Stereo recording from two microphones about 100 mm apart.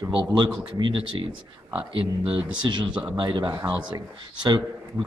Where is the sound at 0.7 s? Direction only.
50° right (ahead or behind).